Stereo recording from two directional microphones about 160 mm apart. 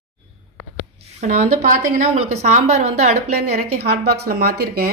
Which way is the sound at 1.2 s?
55° right (ahead or behind).